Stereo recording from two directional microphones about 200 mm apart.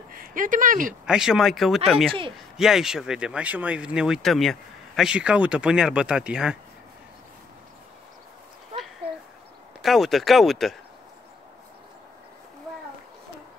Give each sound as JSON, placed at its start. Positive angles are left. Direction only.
{"t": 0.1, "sound": "speech", "side_deg": -45}
{"t": 1.0, "sound": "speech", "side_deg": -5}
{"t": 9.8, "sound": "speech", "side_deg": 0}